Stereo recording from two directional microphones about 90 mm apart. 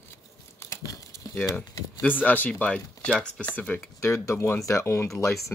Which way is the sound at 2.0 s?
20° left (ahead or behind).